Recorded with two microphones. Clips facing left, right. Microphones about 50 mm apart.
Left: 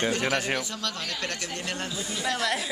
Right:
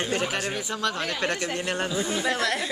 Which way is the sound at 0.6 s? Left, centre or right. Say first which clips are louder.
Right 5 dB; right.